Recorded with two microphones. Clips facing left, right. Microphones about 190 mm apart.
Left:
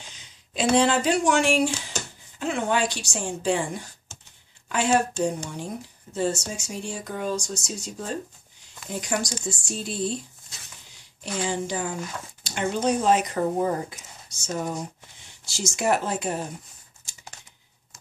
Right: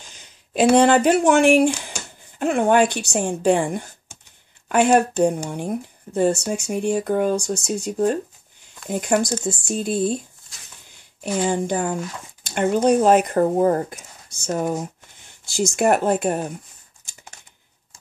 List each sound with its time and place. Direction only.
0.0 s speech: 50° right (ahead or behind)
1.7 s speech: 10° right (ahead or behind)
2.3 s speech: 55° right (ahead or behind)
4.1 s a sound: 15° right (ahead or behind)
4.6 s speech: 55° right (ahead or behind)
11.4 s speech: 55° right (ahead or behind)
15.5 s speech: 55° right (ahead or behind)